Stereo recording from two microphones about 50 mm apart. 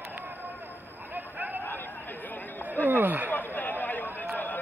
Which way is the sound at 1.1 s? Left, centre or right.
Right.